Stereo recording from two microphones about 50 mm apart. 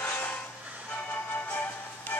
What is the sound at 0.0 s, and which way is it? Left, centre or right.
Vehicle, left.